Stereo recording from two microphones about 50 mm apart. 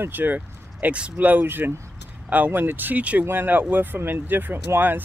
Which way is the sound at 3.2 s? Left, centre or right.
Right.